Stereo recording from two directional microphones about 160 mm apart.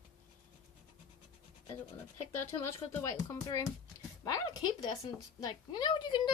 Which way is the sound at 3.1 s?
20° left (ahead or behind).